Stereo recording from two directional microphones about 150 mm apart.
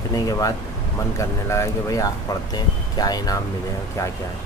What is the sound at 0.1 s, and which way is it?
Speech, 25° left (ahead or behind).